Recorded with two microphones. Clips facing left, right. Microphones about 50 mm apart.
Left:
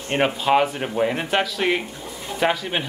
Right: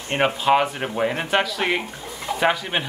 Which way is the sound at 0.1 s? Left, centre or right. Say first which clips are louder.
Even; centre.